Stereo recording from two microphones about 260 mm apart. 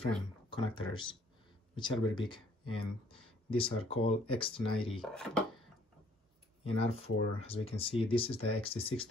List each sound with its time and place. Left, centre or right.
0.5 s speech: centre
5.0 s speech: centre
6.6 s speech: left